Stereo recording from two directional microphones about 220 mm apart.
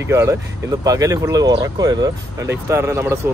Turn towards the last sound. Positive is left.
turn(degrees=-10)  # may be behind; listen again after turning